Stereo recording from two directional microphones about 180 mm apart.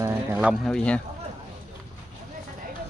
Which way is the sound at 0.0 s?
10° right (ahead or behind).